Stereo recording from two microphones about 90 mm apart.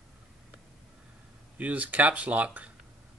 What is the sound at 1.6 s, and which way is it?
Speech, 15° right (ahead or behind).